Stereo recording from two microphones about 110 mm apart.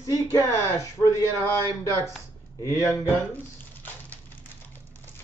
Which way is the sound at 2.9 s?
20° left (ahead or behind).